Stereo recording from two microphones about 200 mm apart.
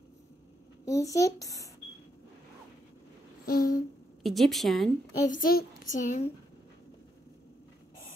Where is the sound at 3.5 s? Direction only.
45° left (ahead or behind).